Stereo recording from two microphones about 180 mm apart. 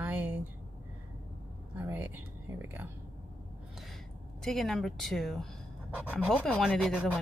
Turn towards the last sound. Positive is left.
turn(degrees=5)  # may be behind; listen again after turning